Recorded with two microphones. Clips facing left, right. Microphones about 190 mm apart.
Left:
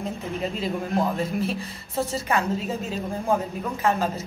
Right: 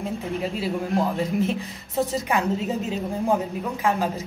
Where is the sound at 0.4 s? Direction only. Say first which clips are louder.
Even; 10° right (ahead or behind).